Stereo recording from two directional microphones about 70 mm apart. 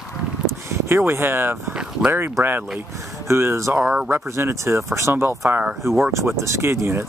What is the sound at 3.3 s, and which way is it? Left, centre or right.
Speech, right.